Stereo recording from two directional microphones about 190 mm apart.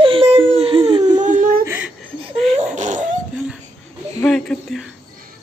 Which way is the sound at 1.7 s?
10° right (ahead or behind).